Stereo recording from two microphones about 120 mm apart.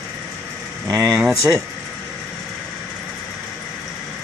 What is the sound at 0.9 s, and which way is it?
Speech, 30° right (ahead or behind).